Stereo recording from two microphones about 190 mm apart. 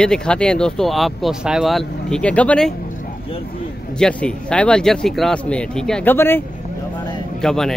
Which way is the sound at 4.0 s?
5° left (ahead or behind).